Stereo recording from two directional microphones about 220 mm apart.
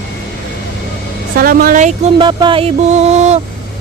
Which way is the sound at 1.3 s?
40° right (ahead or behind).